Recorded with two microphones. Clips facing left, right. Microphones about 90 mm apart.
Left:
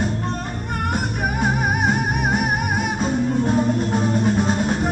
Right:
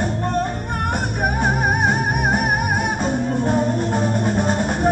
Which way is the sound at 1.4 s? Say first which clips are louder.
Right 1 dB; 45° right (ahead or behind).